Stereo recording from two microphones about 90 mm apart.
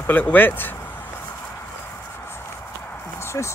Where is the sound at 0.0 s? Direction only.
20° left (ahead or behind).